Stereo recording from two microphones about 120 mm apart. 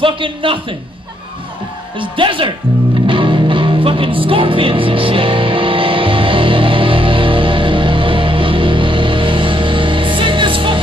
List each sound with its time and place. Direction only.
0.0 s a man's voice: 45° right (ahead or behind)
2.0 s a man's voice: 45° right (ahead or behind)
3.1 s music: 45° right (ahead or behind)